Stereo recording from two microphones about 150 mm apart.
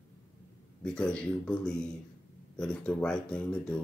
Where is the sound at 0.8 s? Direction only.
5° left (ahead or behind).